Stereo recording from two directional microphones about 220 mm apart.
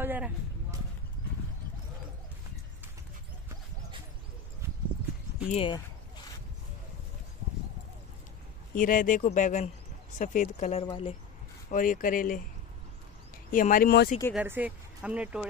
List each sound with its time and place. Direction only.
0.0 s a sound: 10° right (ahead or behind)
5.5 s speech: 25° left (ahead or behind)
8.7 s speech: 40° left (ahead or behind)
11.7 s speech: 35° left (ahead or behind)
13.5 s speech: 40° left (ahead or behind)
14.3 s speech: 10° right (ahead or behind)